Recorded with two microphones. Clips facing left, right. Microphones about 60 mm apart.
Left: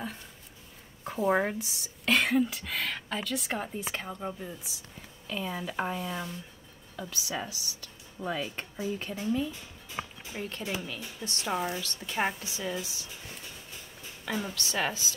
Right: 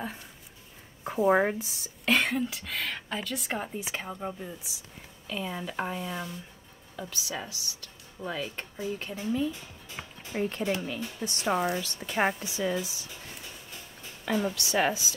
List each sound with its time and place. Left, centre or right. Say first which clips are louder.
1.0 s speech: right 3 dB; centre
1.6 s speech: even; centre
10.0 s music: left 6 dB; centre
10.3 s speech: right 6 dB; right
14.2 s a woman's voice: right 5 dB; centre
14.5 s a woman's voice: right 4 dB; centre